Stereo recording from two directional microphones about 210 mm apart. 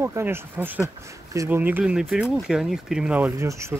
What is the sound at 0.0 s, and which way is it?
Speech, 10° right (ahead or behind).